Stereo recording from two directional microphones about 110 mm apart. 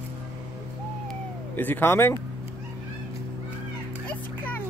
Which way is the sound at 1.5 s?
20° left (ahead or behind).